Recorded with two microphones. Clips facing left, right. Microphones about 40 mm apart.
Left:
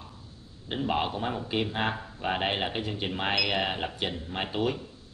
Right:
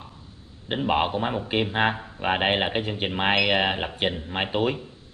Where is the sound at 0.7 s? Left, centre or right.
Right.